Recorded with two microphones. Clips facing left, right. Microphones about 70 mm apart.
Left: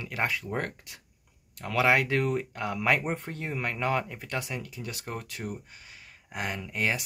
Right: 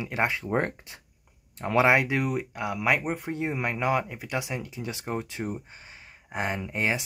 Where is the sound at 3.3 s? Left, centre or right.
Centre.